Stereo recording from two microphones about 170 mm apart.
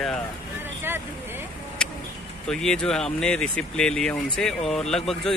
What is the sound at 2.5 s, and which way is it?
Speech, 5° left (ahead or behind).